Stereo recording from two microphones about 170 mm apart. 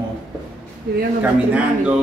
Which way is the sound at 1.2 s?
5° right (ahead or behind).